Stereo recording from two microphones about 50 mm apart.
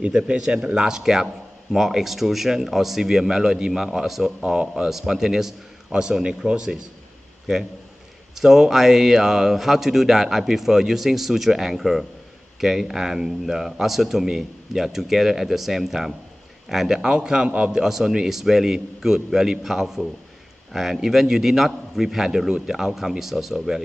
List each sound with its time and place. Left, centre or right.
0.0 s a man's voice: right
8.4 s a man's voice: centre